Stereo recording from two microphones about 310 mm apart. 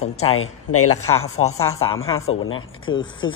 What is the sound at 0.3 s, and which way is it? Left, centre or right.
Speech, left.